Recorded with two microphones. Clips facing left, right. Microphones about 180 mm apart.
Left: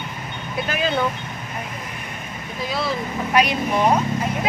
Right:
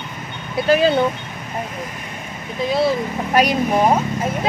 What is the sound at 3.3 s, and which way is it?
Speech, 45° right (ahead or behind).